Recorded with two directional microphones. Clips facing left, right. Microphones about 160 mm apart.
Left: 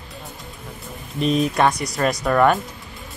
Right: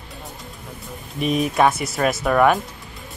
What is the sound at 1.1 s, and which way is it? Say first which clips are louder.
Speech: even; 5° right (ahead or behind).